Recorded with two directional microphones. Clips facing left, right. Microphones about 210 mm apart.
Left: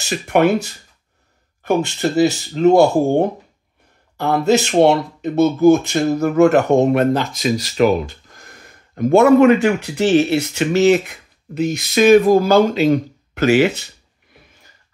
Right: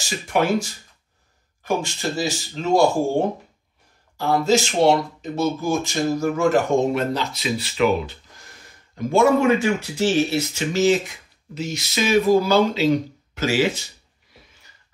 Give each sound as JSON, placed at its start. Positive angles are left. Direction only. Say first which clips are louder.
{"t": 0.0, "sound": "speech", "louder": "left 7 dB", "side_deg": 60}